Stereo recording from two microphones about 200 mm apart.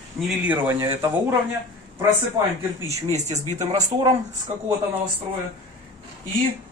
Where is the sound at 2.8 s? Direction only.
35° right (ahead or behind).